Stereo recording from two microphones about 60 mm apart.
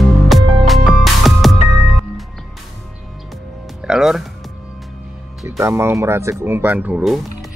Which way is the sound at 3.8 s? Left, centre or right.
Centre.